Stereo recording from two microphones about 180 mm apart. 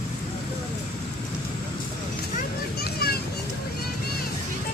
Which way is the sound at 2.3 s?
60° left (ahead or behind).